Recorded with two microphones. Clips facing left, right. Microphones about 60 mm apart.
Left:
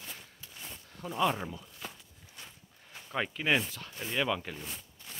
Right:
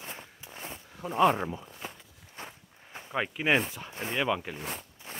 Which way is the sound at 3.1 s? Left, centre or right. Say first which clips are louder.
Right 3 dB; centre.